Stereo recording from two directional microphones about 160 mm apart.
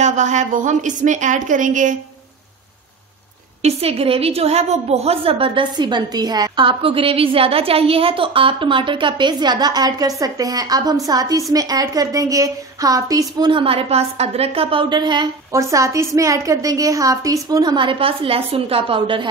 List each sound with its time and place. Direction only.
0.0 s a woman's voice: 50° right (ahead or behind)
3.6 s a woman's voice: 40° right (ahead or behind); by 13.5 s 20° right (ahead or behind)
13.5 s a woman's voice: 35° right (ahead or behind)